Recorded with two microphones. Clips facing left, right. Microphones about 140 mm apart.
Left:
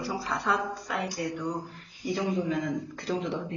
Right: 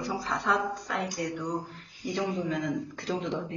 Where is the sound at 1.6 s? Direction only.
10° left (ahead or behind).